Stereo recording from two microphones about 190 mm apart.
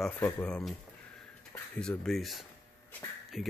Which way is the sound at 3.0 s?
15° left (ahead or behind).